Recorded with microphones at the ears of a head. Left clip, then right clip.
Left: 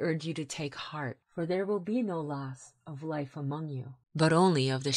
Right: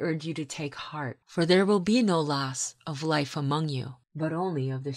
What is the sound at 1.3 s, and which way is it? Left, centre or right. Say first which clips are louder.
Speech: right 9 dB; right.